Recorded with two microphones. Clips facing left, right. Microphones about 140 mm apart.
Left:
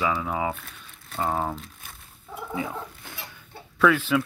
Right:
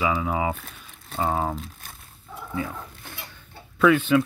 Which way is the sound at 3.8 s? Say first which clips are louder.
Right 3 dB; centre (ahead or behind).